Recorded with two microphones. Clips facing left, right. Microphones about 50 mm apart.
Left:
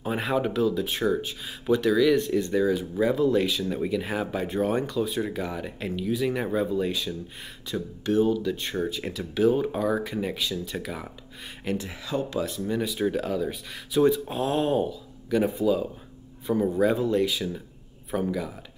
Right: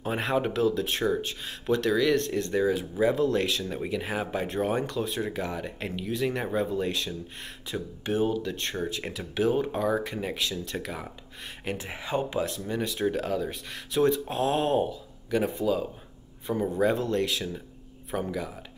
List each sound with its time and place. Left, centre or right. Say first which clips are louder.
0.0 s speech: left 1 dB; centre
7.7 s speech: left 5 dB; centre
8.4 s speech: left 3 dB; centre
11.6 s speech: left 4 dB; centre
11.9 s speech: even; right
12.4 s speech: left 3 dB; centre